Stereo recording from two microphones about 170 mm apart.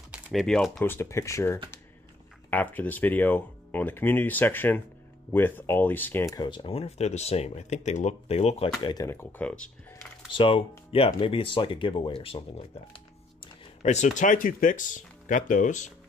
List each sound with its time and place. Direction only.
0.1 s speech: centre (ahead or behind); by 8.7 s 35° left (ahead or behind)
8.8 s speech: 20° left (ahead or behind)
10.3 s speech: 30° left (ahead or behind)
13.8 s speech: 45° left (ahead or behind)